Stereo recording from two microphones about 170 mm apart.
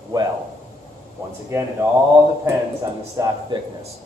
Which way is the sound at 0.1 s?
20° right (ahead or behind).